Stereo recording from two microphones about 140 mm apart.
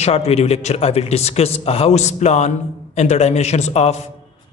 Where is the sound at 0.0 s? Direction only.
45° left (ahead or behind).